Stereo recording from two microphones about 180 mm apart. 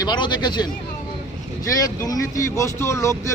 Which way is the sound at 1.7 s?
20° left (ahead or behind).